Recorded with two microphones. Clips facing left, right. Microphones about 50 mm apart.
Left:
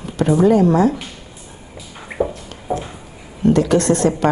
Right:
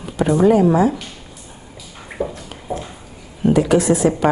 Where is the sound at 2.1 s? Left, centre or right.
Centre.